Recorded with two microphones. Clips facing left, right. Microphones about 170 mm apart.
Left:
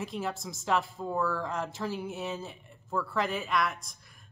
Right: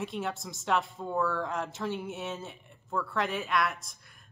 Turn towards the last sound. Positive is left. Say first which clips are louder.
# even
turn(degrees=0)  # may be behind; listen again after turning